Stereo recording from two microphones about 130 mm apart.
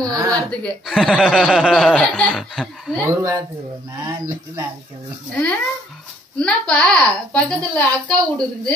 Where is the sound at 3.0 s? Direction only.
20° right (ahead or behind).